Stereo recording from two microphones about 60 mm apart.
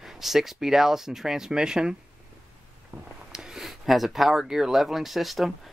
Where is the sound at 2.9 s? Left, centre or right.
Right.